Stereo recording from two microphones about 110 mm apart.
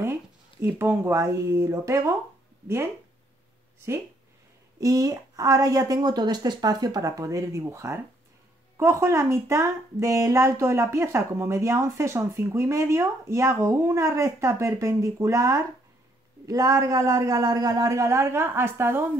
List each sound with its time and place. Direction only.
0.0 s speech: 20° right (ahead or behind)
4.7 s a woman's voice: 30° right (ahead or behind)